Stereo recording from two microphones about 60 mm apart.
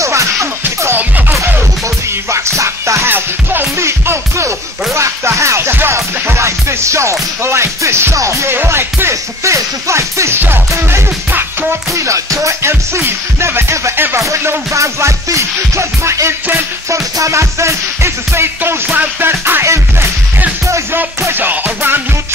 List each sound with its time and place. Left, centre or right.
0.0 s music: right
2.3 s music: right
3.1 s music: right
3.8 s music: right
14.1 s music: right
18.9 s music: right
19.6 s music: right
21.4 s music: right